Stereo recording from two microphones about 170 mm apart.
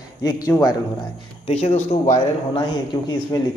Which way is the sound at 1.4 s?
40° left (ahead or behind).